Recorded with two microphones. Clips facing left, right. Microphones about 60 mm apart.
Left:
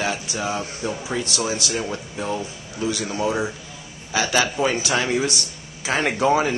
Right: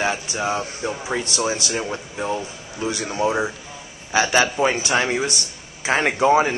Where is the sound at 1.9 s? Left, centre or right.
Centre.